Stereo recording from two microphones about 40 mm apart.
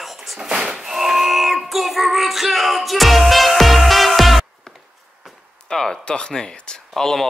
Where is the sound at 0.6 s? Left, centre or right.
Centre.